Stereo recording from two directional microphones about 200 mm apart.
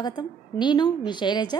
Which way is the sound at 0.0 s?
20° left (ahead or behind).